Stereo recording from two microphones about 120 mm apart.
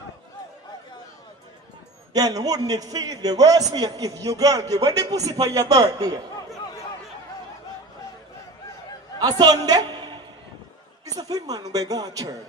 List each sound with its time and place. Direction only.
2.1 s a man's voice: 30° right (ahead or behind)
9.2 s a sound: 30° right (ahead or behind)
11.1 s a man's voice: 30° right (ahead or behind)